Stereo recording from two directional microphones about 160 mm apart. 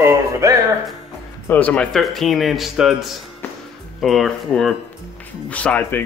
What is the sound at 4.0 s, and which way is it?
Speech, centre (ahead or behind).